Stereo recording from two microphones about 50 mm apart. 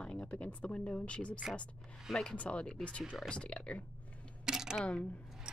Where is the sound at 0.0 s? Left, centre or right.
Left.